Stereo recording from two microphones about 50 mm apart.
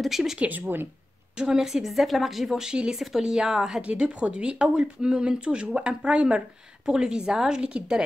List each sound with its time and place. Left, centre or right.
0.0 s a woman's voice: centre
0.4 s speech: right
1.3 s a woman's voice: centre
3.8 s a woman's voice: right